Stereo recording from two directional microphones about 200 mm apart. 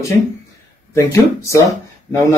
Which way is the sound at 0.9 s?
15° left (ahead or behind).